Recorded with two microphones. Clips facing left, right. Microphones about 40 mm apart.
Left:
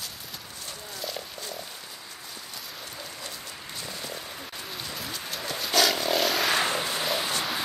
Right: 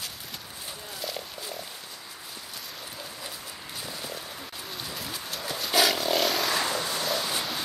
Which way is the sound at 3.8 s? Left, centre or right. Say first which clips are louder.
Even; centre.